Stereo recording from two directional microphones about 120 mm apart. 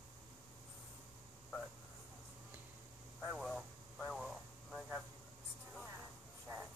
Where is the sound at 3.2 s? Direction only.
Centre (ahead or behind).